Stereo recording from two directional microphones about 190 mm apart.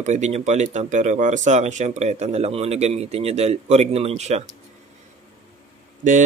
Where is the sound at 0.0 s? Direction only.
40° right (ahead or behind).